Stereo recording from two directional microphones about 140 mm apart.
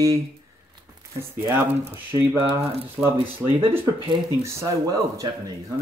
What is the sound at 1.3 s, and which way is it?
Speech, 15° right (ahead or behind).